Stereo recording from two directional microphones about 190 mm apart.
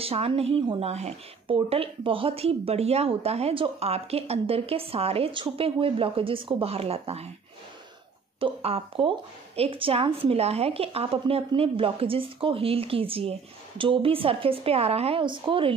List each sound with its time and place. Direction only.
0.0 s a woman's voice: 30° right (ahead or behind)
8.4 s speech: 30° right (ahead or behind)